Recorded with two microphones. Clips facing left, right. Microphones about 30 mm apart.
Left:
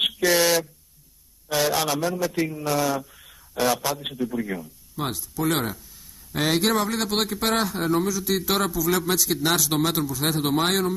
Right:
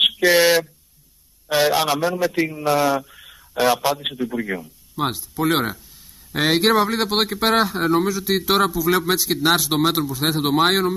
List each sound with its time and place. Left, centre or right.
0.0 s a man's voice: right
5.3 s a man's voice: right